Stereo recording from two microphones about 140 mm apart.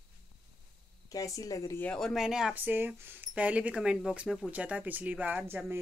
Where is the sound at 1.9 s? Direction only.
5° left (ahead or behind).